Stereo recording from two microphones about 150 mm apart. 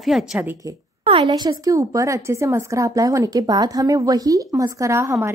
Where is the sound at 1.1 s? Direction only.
30° right (ahead or behind).